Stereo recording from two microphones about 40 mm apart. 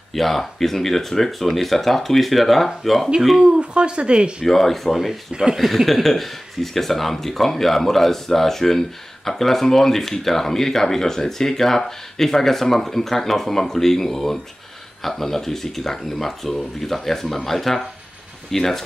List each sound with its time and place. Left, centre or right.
0.1 s speech: centre
3.3 s speech: right
4.5 s speech: centre
5.3 s speech: centre
5.6 s speech: centre